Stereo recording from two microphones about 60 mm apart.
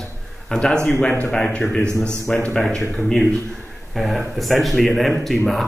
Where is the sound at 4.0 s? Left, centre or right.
Centre.